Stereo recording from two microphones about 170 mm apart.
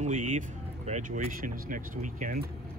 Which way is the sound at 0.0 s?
50° right (ahead or behind).